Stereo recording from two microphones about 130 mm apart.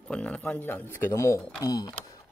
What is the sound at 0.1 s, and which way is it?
Speech, 10° left (ahead or behind).